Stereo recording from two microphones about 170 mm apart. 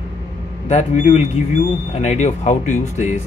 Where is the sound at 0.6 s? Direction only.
45° left (ahead or behind).